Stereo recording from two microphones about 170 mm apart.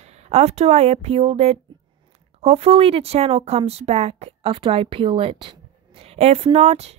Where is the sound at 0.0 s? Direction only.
40° right (ahead or behind).